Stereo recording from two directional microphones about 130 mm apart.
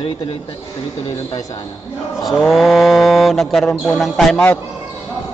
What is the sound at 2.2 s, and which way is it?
Speech, centre (ahead or behind).